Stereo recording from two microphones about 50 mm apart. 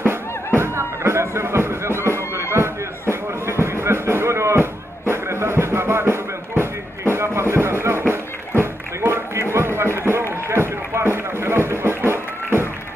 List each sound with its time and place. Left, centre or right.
0.0 s music: right